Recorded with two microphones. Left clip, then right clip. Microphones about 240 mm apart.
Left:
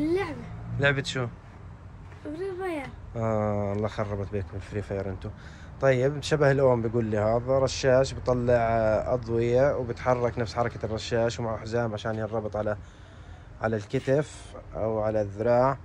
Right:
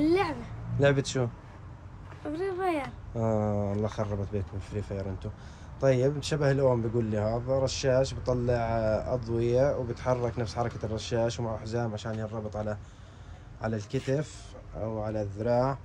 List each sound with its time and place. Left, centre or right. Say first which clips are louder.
0.0 s a sound: right 2 dB; centre
0.7 s speech: even; centre
2.2 s speech: right 2 dB; centre